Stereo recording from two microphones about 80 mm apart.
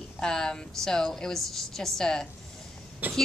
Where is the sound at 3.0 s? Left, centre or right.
Right.